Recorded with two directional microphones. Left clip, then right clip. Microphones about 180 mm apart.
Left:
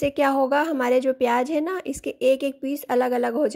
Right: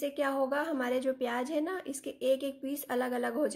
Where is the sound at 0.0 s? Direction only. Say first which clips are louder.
Left 10 dB; 45° left (ahead or behind).